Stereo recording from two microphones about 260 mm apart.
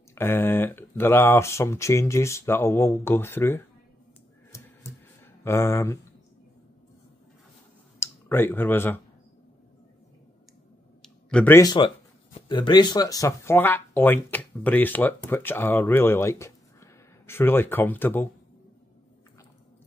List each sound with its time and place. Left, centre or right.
0.1 s speech: centre
5.2 s speech: centre
8.0 s speech: centre
11.0 s a sound: centre
12.4 s speech: centre